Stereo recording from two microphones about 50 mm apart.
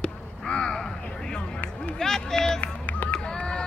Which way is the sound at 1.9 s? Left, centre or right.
Centre.